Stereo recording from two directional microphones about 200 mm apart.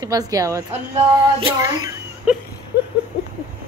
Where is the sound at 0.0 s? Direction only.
20° right (ahead or behind).